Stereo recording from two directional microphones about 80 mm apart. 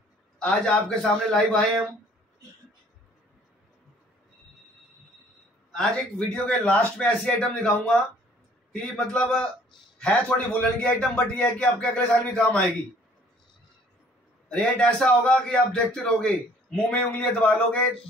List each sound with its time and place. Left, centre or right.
0.4 s a man's voice: centre
5.7 s a man's voice: centre
14.5 s a man's voice: centre